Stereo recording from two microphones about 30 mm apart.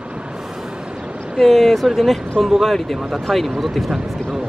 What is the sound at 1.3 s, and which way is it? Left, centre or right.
Speech, centre.